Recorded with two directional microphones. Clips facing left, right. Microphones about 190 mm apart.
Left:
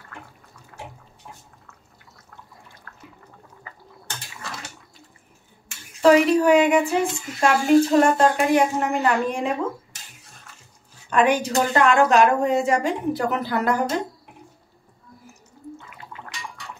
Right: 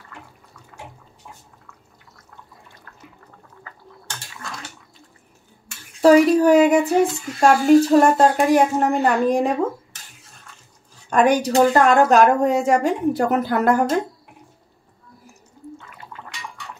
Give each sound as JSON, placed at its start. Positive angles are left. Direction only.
{"t": 5.9, "sound": "a woman's voice", "side_deg": -35}
{"t": 11.1, "sound": "a woman's voice", "side_deg": -40}